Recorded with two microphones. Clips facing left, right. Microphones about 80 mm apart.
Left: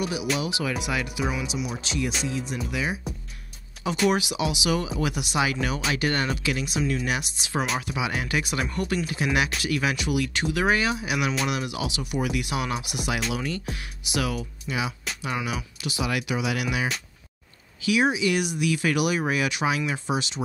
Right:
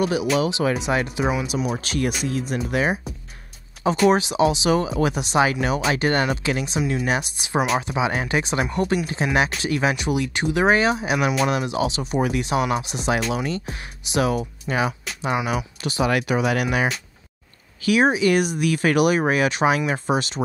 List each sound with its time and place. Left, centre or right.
0.0 s speech: right
1.4 s speech: right
4.1 s speech: right
7.1 s speech: right
14.4 s speech: right